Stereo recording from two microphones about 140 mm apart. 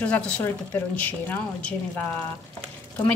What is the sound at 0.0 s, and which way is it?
A woman's voice, 10° left (ahead or behind).